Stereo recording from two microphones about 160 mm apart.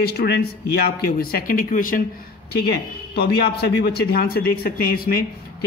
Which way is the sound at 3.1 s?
90° left.